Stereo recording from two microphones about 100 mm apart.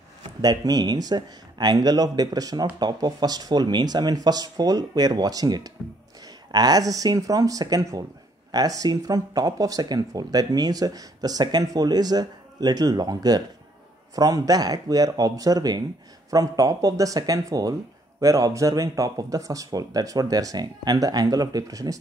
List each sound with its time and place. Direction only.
0.4 s speech: 40° right (ahead or behind)